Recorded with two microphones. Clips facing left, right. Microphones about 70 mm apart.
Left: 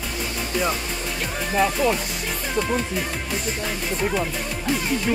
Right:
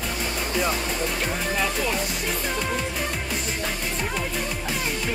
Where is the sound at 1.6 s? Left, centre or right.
Centre.